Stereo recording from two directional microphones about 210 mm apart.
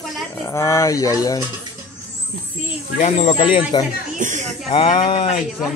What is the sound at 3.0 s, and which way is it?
Speech, 30° left (ahead or behind).